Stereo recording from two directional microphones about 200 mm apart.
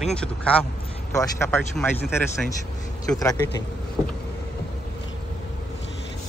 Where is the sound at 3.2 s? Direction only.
15° left (ahead or behind).